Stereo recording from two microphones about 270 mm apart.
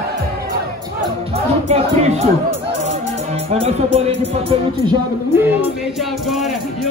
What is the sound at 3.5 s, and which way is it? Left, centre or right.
Music, right.